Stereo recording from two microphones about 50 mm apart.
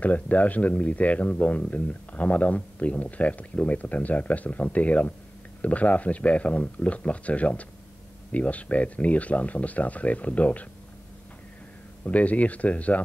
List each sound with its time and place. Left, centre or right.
0.0 s speech: left
12.0 s speech: left